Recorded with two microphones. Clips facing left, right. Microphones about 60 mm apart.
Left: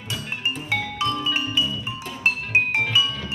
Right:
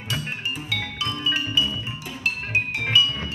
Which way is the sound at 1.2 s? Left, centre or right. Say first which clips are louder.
Even; left.